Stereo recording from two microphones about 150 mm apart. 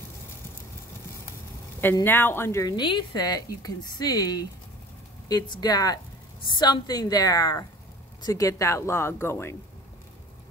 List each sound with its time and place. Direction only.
2.0 s speech: 15° left (ahead or behind)
2.7 s speech: 30° left (ahead or behind)